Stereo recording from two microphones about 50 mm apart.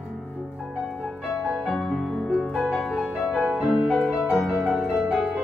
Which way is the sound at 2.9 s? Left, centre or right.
Centre.